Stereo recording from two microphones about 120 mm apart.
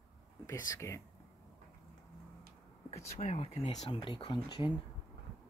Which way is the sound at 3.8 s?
50° left (ahead or behind).